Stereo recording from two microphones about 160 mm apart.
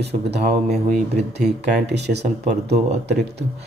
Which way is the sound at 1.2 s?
45° right (ahead or behind).